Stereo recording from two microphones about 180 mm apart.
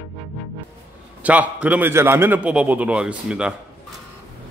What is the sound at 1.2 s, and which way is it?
A man's voice, 10° right (ahead or behind).